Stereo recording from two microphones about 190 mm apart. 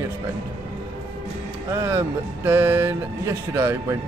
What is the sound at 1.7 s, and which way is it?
Speech, 15° right (ahead or behind).